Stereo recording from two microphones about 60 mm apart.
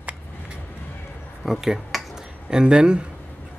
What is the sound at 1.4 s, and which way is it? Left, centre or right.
Speech, centre.